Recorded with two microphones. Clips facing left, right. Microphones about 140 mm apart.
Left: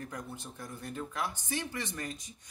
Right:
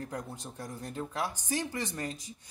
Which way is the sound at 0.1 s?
35° right (ahead or behind).